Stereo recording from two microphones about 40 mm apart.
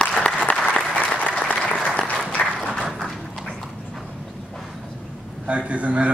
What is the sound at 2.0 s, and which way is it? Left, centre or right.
Applause, left.